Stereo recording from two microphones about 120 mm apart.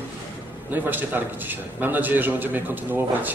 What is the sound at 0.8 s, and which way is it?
A man's voice, 15° right (ahead or behind).